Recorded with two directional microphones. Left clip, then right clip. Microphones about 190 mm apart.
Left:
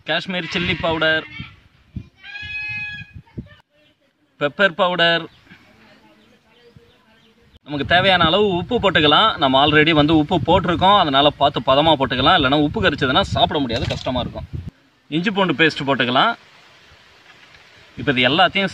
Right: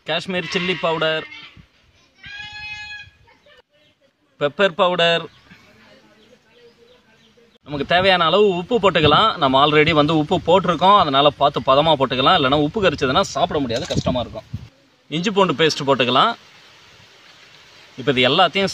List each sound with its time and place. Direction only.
0.0 s speech: 10° right (ahead or behind)
4.4 s speech: 10° right (ahead or behind)
7.6 s speech: 5° right (ahead or behind)
15.0 s speech: 15° right (ahead or behind)
18.0 s speech: 15° right (ahead or behind)